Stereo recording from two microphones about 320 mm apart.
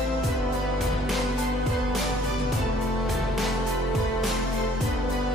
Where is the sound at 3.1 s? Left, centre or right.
Centre.